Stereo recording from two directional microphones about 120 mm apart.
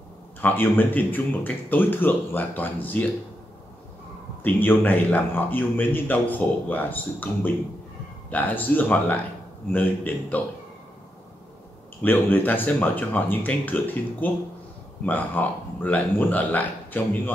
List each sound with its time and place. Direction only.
0.4 s a man's voice: 15° left (ahead or behind)
4.4 s a man's voice: 15° left (ahead or behind)
12.0 s a man's voice: 15° left (ahead or behind)